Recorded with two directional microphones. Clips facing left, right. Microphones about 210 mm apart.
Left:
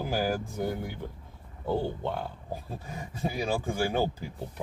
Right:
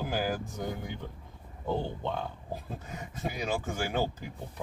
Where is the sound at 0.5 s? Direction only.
5° left (ahead or behind).